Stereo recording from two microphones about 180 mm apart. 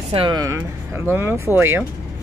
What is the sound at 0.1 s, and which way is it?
Speech, 30° right (ahead or behind).